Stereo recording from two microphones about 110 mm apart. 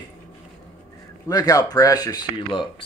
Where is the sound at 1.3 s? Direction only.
35° left (ahead or behind).